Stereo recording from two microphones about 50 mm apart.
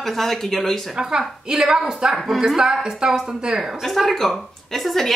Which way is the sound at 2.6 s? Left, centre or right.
Centre.